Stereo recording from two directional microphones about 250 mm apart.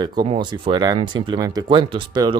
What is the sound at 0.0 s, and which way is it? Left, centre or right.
Speech, centre.